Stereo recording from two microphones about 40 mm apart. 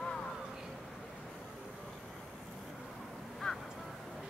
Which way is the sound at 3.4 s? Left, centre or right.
Centre.